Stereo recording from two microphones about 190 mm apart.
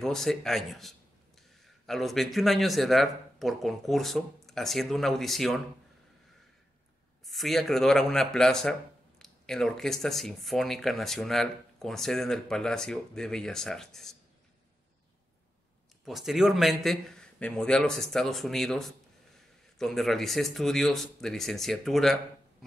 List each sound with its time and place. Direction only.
0.0 s speech: centre (ahead or behind)
7.2 s speech: centre (ahead or behind)
16.1 s speech: centre (ahead or behind)